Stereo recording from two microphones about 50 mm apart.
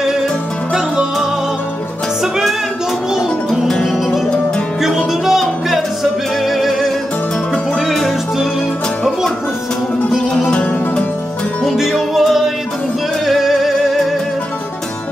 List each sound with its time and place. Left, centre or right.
3.8 s music: centre
10.1 s music: centre
10.5 s music: left
11.6 s music: centre